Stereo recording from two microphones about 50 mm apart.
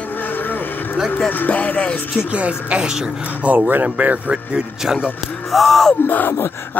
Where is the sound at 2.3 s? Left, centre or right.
Right.